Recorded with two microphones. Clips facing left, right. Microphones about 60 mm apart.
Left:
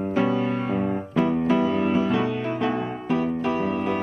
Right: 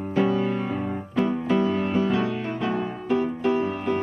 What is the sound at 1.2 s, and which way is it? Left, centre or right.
Music, centre.